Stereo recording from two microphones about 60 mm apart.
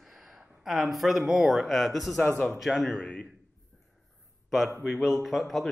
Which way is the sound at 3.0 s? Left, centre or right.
Centre.